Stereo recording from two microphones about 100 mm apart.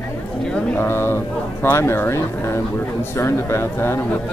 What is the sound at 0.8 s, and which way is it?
Speech, 25° left (ahead or behind).